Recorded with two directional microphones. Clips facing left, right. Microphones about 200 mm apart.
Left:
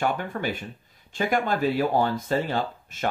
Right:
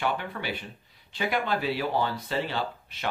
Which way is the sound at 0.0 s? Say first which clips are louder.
Left 4 dB; 45° left (ahead or behind).